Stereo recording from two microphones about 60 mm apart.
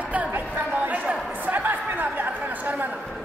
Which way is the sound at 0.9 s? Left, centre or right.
Right.